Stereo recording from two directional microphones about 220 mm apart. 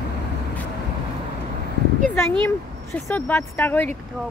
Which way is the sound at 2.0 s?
10° left (ahead or behind).